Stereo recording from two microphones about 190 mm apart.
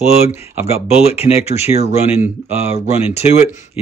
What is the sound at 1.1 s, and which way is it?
Speech, 30° left (ahead or behind).